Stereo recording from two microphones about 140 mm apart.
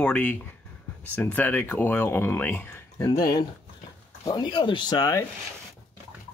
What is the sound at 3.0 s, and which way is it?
Speech, 25° left (ahead or behind).